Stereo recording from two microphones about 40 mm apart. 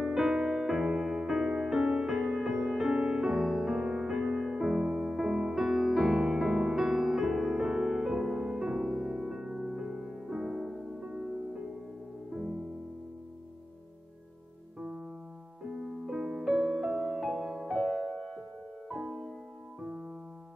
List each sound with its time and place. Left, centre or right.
0.0 s music: centre
2.9 s music: centre
4.2 s music: centre
12.3 s music: centre
14.8 s music: centre
19.8 s music: centre